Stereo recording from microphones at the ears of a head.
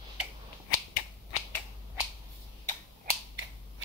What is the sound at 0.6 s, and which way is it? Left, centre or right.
Finger snapping, left.